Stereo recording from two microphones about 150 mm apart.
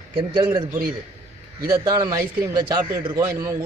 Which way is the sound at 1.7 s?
25° right (ahead or behind).